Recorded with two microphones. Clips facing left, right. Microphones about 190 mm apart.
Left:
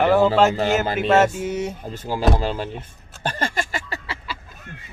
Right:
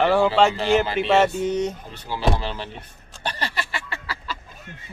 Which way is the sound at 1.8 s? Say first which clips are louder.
Left 3 dB; 45° left (ahead or behind).